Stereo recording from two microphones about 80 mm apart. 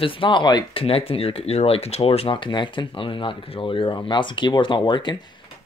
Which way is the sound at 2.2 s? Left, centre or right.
Left.